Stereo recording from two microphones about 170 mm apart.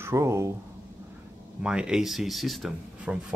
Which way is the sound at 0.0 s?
15° right (ahead or behind).